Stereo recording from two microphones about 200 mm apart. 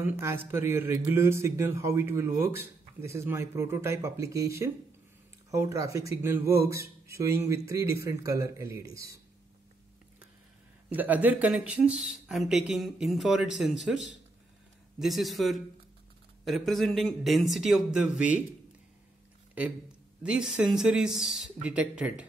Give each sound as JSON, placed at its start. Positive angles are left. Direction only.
{"t": 0.0, "sound": "a man's voice", "side_deg": -15}
{"t": 10.9, "sound": "speech", "side_deg": -10}
{"t": 20.2, "sound": "a man's voice", "side_deg": -5}